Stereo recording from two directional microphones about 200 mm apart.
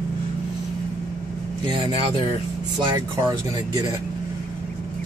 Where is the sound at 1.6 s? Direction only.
25° right (ahead or behind).